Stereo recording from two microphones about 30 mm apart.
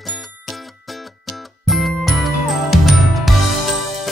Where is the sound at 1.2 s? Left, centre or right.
Centre.